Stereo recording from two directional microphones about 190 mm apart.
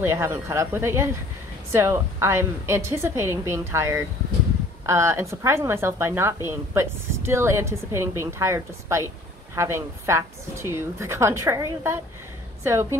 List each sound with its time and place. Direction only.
0.0 s a woman's voice: 15° right (ahead or behind)